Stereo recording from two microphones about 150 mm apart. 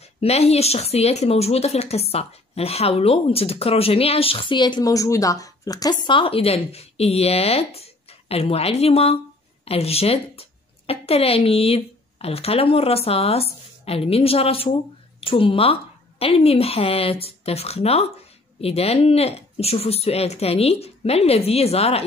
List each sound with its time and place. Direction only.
0.2 s speech: 45° left (ahead or behind)